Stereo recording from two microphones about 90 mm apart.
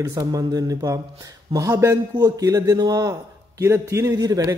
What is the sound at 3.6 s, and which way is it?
A man's voice, 30° right (ahead or behind).